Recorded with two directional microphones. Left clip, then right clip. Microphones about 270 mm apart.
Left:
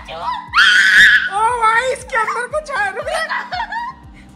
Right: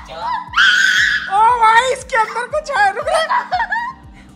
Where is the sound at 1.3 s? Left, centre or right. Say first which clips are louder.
Right 4 dB; centre.